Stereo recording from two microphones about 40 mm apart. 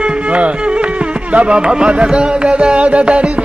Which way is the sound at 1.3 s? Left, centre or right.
Right.